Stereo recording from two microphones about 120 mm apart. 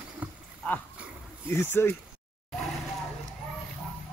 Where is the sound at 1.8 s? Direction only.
20° left (ahead or behind).